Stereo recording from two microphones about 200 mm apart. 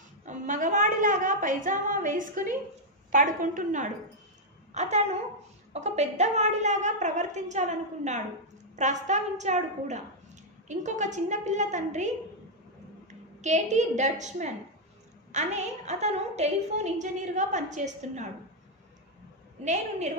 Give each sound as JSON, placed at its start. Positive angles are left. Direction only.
{"t": 0.2, "sound": "a sound", "side_deg": -40}
{"t": 3.1, "sound": "a woman's voice", "side_deg": -40}
{"t": 13.4, "sound": "a woman's voice", "side_deg": -35}
{"t": 19.6, "sound": "a woman's voice", "side_deg": -35}